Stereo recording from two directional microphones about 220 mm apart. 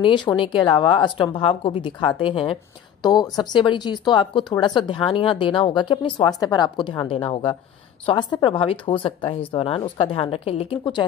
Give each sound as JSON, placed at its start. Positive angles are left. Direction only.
{"t": 0.0, "sound": "a woman's voice", "side_deg": 20}